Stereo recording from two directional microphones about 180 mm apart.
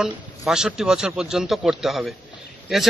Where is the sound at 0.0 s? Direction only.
5° right (ahead or behind).